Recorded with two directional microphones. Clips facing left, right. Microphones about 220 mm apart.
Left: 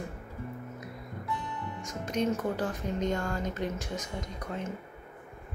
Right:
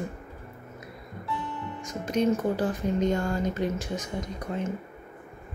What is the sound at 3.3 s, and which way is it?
Speech, 5° right (ahead or behind).